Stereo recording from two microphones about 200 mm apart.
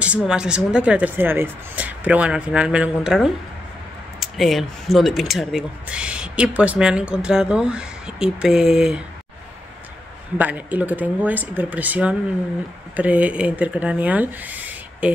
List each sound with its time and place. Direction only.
0.0 s speech: 5° right (ahead or behind)
10.3 s speech: 10° right (ahead or behind)